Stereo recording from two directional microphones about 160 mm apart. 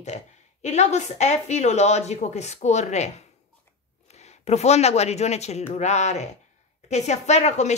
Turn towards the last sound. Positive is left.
turn(degrees=45)  # may be behind; listen again after turning